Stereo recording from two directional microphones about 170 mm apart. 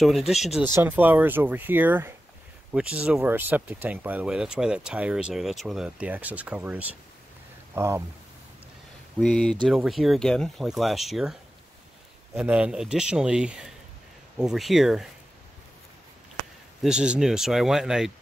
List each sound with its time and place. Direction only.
0.3 s speech: centre (ahead or behind)
9.2 s speech: 5° left (ahead or behind)
12.4 s speech: 5° right (ahead or behind)
16.8 s speech: 5° right (ahead or behind)